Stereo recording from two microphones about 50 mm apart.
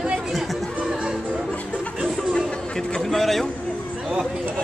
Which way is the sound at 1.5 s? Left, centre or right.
Left.